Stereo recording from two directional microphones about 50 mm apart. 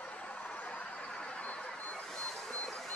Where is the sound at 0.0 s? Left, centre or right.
Left.